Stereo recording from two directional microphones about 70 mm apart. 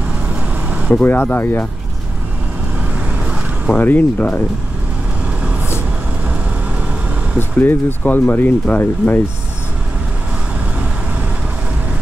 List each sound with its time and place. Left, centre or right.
0.3 s vehicle: centre
1.0 s speech: left
3.6 s speech: left
7.3 s speech: left